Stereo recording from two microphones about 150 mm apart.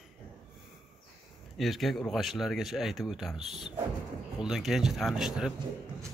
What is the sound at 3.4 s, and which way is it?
Speech, 45° right (ahead or behind).